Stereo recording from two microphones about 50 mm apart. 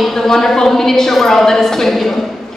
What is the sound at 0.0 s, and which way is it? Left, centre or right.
A woman's voice, centre.